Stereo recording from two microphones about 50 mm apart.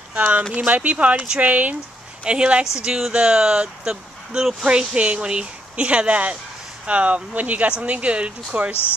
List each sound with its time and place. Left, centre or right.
0.1 s speech: right
2.2 s speech: centre
4.6 s speech: right